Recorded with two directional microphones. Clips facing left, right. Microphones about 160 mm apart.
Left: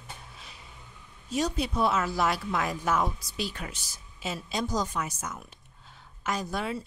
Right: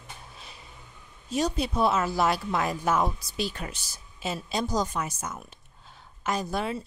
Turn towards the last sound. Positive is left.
turn(degrees=-30)  # may be behind; listen again after turning